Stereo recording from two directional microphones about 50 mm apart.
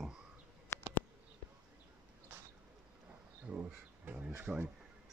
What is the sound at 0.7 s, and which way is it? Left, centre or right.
Bee, left.